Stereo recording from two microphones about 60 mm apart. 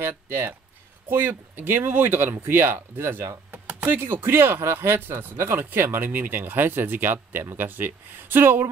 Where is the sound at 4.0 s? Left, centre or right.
Right.